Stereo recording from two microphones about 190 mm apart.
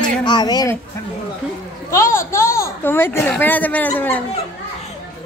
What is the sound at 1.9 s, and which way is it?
A child's voice, 15° left (ahead or behind).